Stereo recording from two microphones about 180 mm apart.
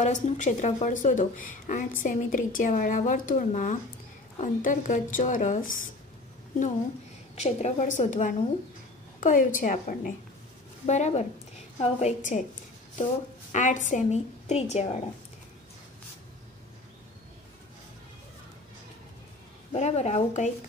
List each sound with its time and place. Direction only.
0.0 s a woman's voice: 40° left (ahead or behind)
7.3 s a woman's voice: 40° left (ahead or behind)
13.5 s a woman's voice: 45° left (ahead or behind)
19.7 s a woman's voice: 40° left (ahead or behind)